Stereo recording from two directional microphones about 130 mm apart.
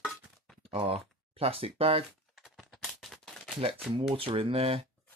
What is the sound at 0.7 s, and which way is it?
Speech, 50° right (ahead or behind).